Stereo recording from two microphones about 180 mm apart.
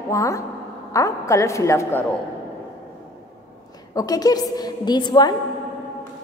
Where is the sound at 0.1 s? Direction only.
15° left (ahead or behind).